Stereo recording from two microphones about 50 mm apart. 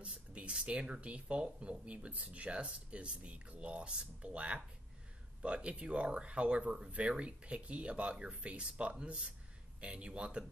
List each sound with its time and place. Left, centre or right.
0.0 s speech: right